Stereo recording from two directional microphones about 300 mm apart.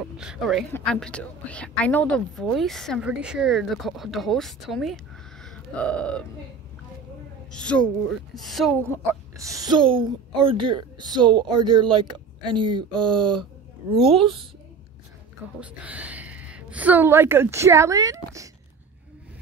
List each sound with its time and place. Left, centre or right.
0.0 s a woman's voice: centre
7.5 s a woman's voice: centre
15.6 s a woman's voice: centre